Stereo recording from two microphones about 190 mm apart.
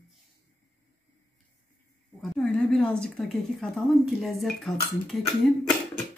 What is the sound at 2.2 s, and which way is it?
Speech, centre (ahead or behind).